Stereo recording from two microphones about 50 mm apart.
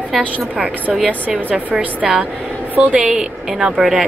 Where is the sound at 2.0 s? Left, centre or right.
Centre.